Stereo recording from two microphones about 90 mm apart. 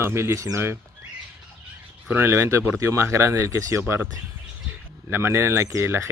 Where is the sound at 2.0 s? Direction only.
25° right (ahead or behind).